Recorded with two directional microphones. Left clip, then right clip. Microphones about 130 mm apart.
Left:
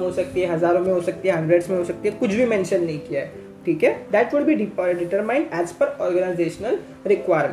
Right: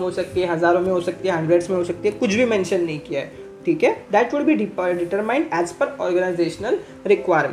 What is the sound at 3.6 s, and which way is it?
Speech, 5° right (ahead or behind).